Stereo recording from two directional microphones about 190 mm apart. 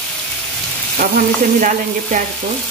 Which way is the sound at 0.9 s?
45° right (ahead or behind).